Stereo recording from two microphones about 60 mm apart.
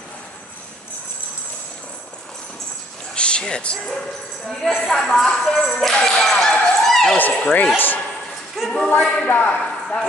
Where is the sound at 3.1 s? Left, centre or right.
Centre.